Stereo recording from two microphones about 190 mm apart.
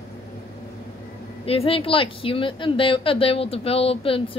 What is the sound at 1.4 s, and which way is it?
A woman's voice, 30° left (ahead or behind).